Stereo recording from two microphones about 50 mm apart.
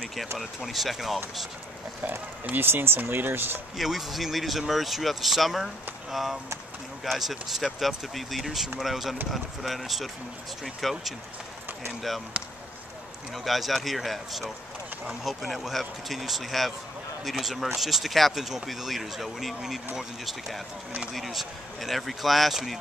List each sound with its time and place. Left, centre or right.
0.7 s speech: centre
2.5 s speech: right
3.7 s speech: centre
7.1 s speech: centre
13.3 s speech: centre